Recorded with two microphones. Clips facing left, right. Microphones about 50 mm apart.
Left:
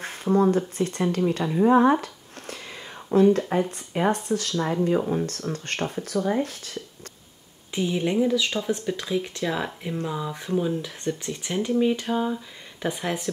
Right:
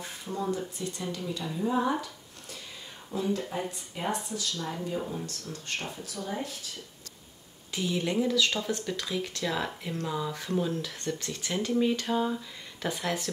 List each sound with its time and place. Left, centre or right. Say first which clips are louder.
0.0 s speech: left 12 dB; left
7.7 s speech: left 5 dB; left